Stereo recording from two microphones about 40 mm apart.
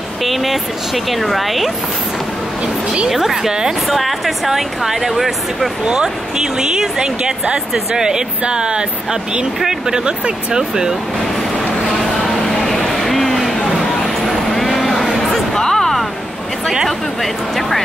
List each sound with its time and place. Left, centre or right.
0.2 s speech: centre
3.1 s speech: centre
5.9 s speech: centre
9.6 s speech: centre
12.1 s a sound: centre
15.5 s music: centre
16.8 s speech: centre